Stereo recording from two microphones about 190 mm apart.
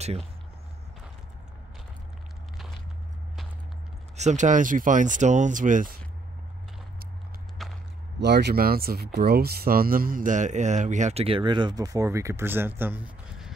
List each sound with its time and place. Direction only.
4.2 s speech: 40° right (ahead or behind)
7.6 s a sound: centre (ahead or behind)
8.2 s speech: 60° right (ahead or behind); by 13.5 s 10° right (ahead or behind)